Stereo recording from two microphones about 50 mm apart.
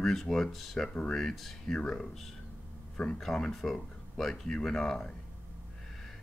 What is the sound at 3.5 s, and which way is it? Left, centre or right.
Speech, centre.